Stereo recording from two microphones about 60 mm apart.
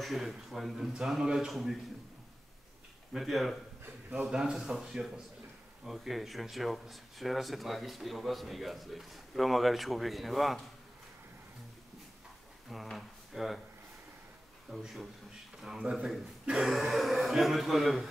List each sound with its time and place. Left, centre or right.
0.0 s a man's voice: centre
3.1 s a man's voice: centre
12.9 s speech: centre
14.7 s speech: centre
15.8 s a man's voice: centre
16.4 s speech: centre